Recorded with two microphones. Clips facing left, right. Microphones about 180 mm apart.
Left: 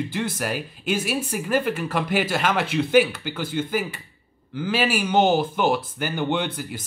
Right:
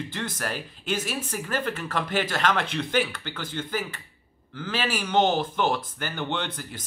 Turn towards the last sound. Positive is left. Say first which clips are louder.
# left 6 dB
turn(degrees=10)  # may be behind; listen again after turning